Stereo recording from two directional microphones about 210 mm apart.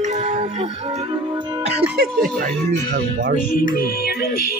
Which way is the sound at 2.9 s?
40° right (ahead or behind).